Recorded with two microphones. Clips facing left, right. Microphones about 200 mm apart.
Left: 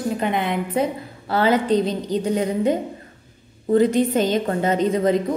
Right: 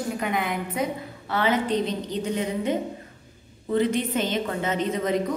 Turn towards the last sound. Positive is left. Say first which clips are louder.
# left 7 dB
turn(degrees=35)  # may be behind; listen again after turning